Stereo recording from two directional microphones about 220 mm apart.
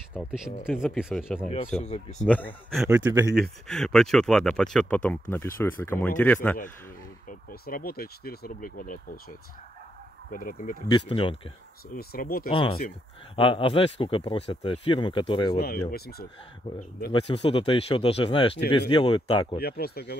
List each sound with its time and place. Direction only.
0.1 s speech: centre (ahead or behind)
1.8 s speech: 30° left (ahead or behind)
2.2 s speech: 5° left (ahead or behind)
2.9 s speech: 10° right (ahead or behind)
3.3 s speech: centre (ahead or behind)
7.2 s speech: 40° left (ahead or behind)
10.3 s speech: 40° left (ahead or behind)
10.9 s speech: 25° left (ahead or behind)
11.9 s speech: 40° left (ahead or behind)
12.4 s speech: 25° left (ahead or behind)
15.5 s speech: 45° left (ahead or behind)
17.1 s speech: 25° left (ahead or behind)
19.6 s speech: 45° left (ahead or behind)